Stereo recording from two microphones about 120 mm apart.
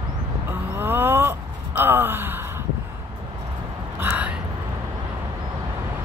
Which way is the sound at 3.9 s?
15° right (ahead or behind).